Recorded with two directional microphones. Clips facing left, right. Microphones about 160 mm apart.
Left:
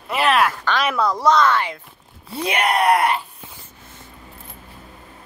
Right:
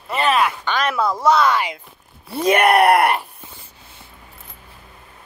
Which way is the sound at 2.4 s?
45° right (ahead or behind).